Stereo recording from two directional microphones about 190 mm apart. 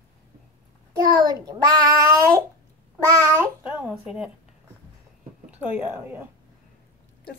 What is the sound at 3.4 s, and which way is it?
Speech, 5° right (ahead or behind).